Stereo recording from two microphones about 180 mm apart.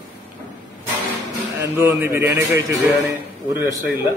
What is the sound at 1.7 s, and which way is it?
Speech, 10° right (ahead or behind).